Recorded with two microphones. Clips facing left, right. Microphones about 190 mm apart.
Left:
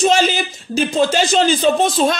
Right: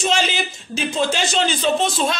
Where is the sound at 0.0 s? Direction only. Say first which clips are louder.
Left 6 dB; 45° left (ahead or behind).